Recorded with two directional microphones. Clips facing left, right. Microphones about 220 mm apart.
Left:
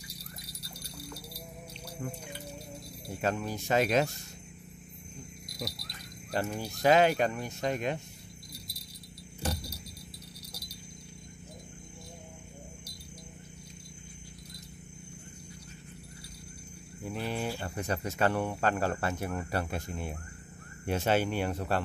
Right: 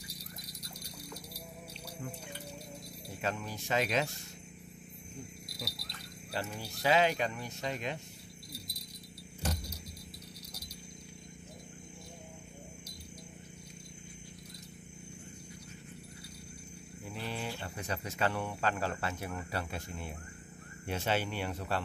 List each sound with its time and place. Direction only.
0.2 s jingle bell: 15° right (ahead or behind)
3.2 s speech: 45° left (ahead or behind)
6.3 s speech: 50° left (ahead or behind)
17.1 s a sound: 50° left (ahead or behind)
17.6 s speech: 45° left (ahead or behind)